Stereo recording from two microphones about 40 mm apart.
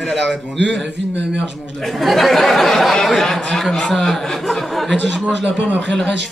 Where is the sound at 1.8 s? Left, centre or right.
Centre.